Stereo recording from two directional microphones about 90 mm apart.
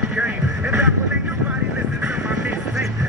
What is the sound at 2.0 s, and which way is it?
Vehicle, 15° right (ahead or behind).